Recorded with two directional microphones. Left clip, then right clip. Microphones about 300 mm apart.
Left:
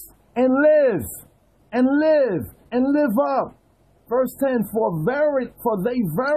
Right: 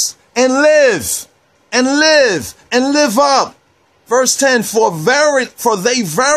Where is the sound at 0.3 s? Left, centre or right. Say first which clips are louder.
Right 6 dB; centre.